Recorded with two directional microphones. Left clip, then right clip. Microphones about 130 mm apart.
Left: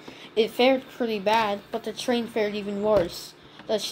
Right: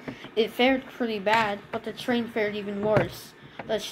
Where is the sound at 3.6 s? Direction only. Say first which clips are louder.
Left 2 dB; 15° left (ahead or behind).